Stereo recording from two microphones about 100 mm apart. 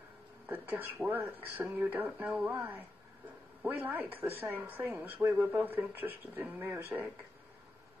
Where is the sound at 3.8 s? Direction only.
20° right (ahead or behind).